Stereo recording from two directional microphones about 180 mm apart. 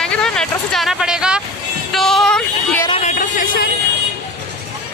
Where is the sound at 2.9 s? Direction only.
40° left (ahead or behind).